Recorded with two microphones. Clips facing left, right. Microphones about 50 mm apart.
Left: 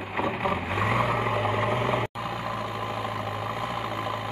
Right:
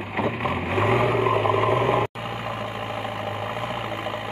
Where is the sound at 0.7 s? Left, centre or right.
Right.